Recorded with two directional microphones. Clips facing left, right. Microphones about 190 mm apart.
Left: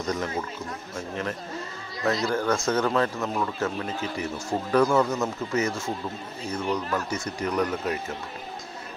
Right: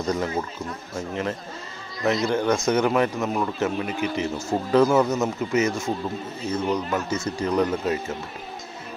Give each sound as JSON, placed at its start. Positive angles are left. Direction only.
{"t": 2.0, "sound": "a man's voice", "side_deg": -20}